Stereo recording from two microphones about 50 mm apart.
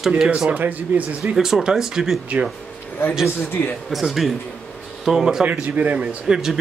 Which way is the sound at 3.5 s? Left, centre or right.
Left.